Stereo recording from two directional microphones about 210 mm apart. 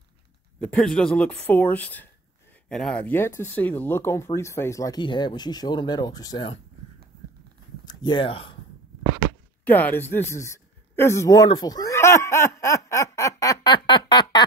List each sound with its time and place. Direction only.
0.6 s speech: 5° left (ahead or behind); by 6.5 s 20° left (ahead or behind)
7.8 s speech: 20° left (ahead or behind)
9.7 s speech: 10° left (ahead or behind)